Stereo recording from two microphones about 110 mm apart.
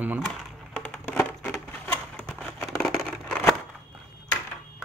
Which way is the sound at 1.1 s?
20° left (ahead or behind).